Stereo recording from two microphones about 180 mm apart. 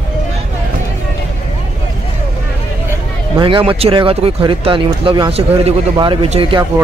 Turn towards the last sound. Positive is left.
turn(degrees=-30)  # may be behind; listen again after turning